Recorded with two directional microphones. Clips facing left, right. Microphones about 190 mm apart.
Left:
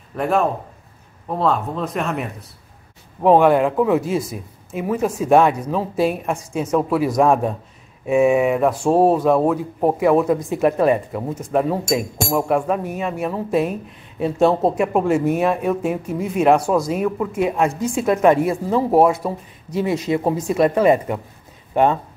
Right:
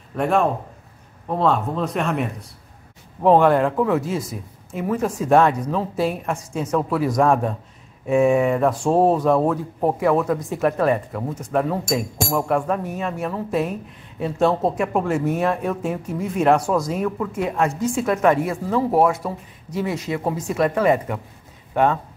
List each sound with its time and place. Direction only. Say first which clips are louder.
0.1 s a man's voice: even; centre (ahead or behind)
3.2 s speech: left 2 dB; 10° left (ahead or behind)